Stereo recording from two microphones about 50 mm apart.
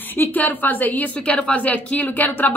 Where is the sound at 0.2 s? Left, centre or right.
Left.